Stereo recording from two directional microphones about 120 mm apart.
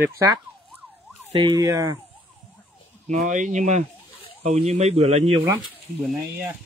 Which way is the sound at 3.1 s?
90° right.